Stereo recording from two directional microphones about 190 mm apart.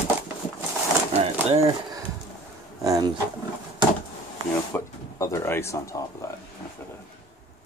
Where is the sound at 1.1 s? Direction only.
35° right (ahead or behind).